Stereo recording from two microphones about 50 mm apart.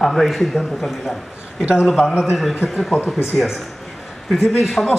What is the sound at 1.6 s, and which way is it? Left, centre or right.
Speech, right.